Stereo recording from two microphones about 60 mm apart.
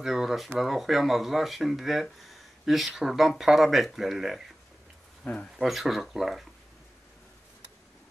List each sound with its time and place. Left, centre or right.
0.0 s speech: centre
5.2 s speech: left
5.6 s speech: centre